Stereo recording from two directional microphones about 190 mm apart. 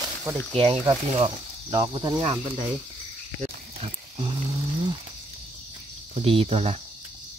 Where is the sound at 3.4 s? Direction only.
30° right (ahead or behind).